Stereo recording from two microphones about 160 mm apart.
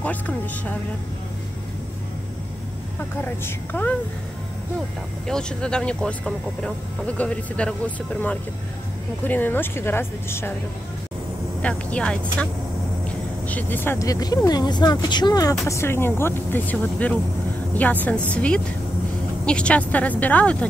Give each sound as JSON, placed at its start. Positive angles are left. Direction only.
{"t": 0.0, "sound": "speech", "side_deg": 10}
{"t": 3.0, "sound": "speech", "side_deg": 15}
{"t": 5.2, "sound": "speech", "side_deg": 5}
{"t": 11.6, "sound": "speech", "side_deg": 5}